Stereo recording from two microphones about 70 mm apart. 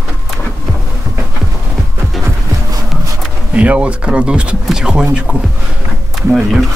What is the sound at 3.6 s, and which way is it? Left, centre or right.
Speech, centre.